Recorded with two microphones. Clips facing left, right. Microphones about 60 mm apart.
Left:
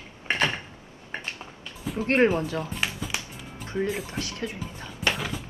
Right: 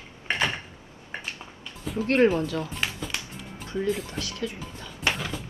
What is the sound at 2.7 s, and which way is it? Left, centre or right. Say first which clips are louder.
Music: left 1 dB; centre.